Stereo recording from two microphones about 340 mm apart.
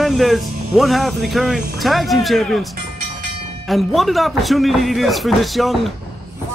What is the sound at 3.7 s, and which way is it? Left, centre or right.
Speech, centre.